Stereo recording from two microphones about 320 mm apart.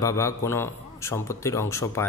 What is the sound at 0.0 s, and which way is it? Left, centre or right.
A man's voice, centre.